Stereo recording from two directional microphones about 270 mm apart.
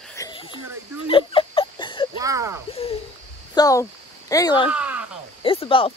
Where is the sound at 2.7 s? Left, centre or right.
Left.